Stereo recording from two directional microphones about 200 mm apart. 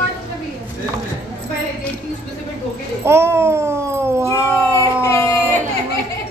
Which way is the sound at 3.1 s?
15° right (ahead or behind).